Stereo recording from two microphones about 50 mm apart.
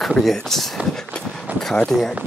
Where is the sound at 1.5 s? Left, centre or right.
Right.